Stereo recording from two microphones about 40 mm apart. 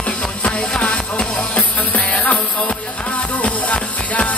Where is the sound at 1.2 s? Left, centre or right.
Centre.